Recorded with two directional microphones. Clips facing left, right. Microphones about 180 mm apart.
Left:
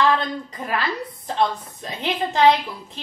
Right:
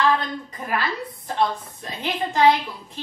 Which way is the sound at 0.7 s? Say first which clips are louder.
Even; 20° left (ahead or behind).